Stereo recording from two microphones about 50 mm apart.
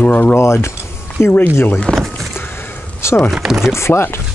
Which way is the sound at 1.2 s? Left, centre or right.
Left.